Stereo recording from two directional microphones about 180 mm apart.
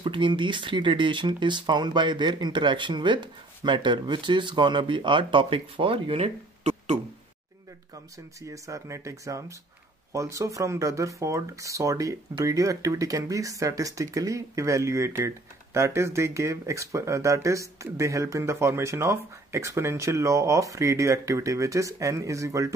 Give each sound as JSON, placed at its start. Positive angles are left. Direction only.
{"t": 0.0, "sound": "speech", "side_deg": -25}
{"t": 8.4, "sound": "speech", "side_deg": -15}